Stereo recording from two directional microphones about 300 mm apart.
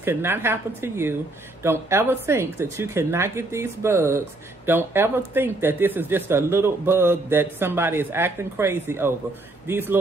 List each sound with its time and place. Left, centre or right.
0.0 s speech: centre